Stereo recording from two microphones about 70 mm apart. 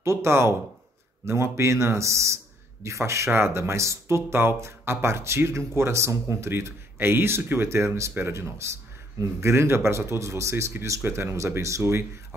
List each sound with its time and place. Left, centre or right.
0.0 s a man's voice: right